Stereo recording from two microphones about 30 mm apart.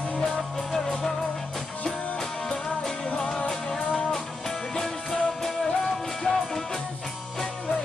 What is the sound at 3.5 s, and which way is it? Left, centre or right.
Music, centre.